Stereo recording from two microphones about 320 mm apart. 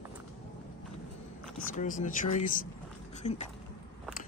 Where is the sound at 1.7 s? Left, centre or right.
Left.